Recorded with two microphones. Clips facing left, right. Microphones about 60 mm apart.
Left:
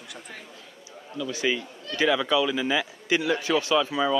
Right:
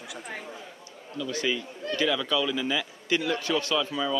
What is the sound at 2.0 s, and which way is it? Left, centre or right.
A man's voice, left.